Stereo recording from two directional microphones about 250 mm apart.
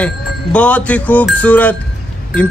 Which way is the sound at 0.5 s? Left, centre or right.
Centre.